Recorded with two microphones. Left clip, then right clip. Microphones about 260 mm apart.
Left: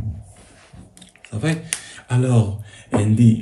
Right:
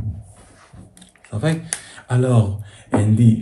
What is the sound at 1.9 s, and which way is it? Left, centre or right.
Speech, centre.